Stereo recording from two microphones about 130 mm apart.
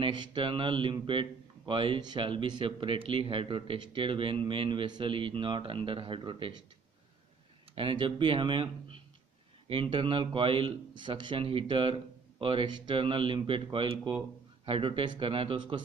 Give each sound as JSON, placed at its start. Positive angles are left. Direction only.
{"t": 0.0, "sound": "speech", "side_deg": -35}
{"t": 7.7, "sound": "speech", "side_deg": -40}